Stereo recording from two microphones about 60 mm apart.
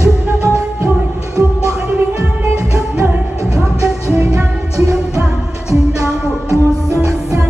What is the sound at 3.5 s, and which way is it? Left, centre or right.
Music, right.